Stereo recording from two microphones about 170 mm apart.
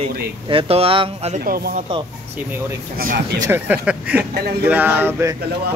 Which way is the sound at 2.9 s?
60° right (ahead or behind).